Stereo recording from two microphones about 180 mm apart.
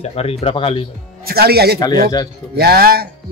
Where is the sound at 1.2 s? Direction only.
60° right (ahead or behind).